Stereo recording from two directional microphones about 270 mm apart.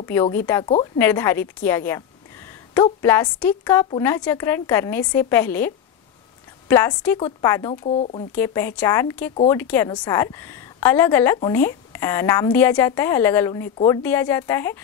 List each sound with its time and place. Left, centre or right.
0.0 s a woman's voice: centre
6.7 s a woman's voice: centre
7.8 s speech: left
8.4 s a woman's voice: centre